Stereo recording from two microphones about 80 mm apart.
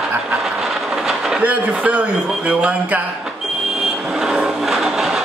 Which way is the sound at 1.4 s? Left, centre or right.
Centre.